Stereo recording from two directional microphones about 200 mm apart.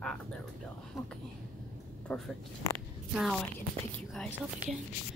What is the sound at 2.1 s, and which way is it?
Speech, 10° left (ahead or behind).